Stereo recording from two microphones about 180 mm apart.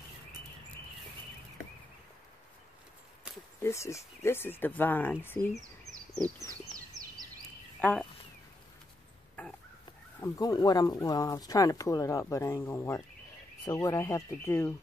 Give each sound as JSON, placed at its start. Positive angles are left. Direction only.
{"t": 3.6, "sound": "speech", "side_deg": 15}
{"t": 7.8, "sound": "speech", "side_deg": 5}
{"t": 10.2, "sound": "speech", "side_deg": 20}